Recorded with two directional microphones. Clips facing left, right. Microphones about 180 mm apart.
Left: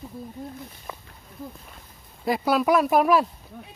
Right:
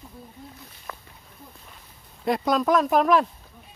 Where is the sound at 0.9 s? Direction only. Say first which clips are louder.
Even; 15° left (ahead or behind).